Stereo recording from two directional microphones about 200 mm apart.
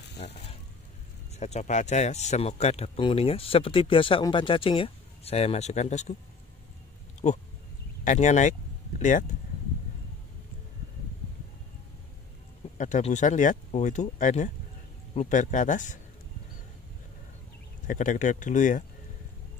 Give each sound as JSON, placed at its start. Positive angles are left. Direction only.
{"t": 1.3, "sound": "speech", "side_deg": 35}
{"t": 8.0, "sound": "speech", "side_deg": 35}
{"t": 12.7, "sound": "speech", "side_deg": 40}
{"t": 17.8, "sound": "speech", "side_deg": 40}